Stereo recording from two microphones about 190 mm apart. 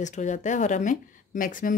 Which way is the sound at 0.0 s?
40° left (ahead or behind).